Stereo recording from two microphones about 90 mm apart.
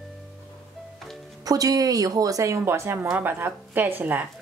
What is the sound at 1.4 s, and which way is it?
Speech, 45° right (ahead or behind).